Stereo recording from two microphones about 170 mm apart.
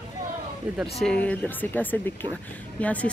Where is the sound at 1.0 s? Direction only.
5° left (ahead or behind).